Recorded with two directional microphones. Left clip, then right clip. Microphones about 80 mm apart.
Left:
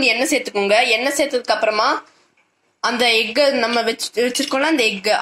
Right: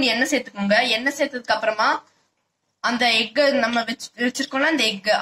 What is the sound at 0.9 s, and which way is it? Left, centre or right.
A woman's voice, left.